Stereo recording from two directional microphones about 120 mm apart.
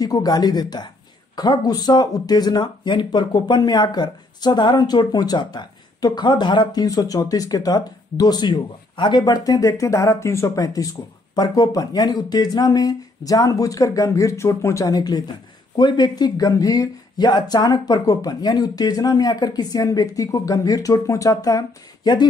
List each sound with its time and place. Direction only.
0.0 s speech: 30° left (ahead or behind)